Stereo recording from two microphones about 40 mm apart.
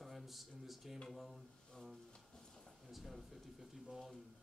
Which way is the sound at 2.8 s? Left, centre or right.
Centre.